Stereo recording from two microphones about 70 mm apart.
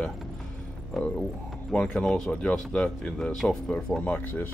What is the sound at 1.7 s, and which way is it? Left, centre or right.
Speech, centre.